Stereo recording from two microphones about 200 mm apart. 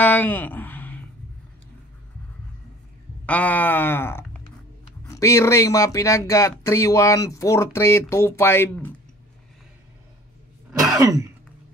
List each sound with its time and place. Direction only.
0.0 s a sound: 10° left (ahead or behind)
3.3 s speech: 5° left (ahead or behind)
11.0 s throat clearing: 15° right (ahead or behind)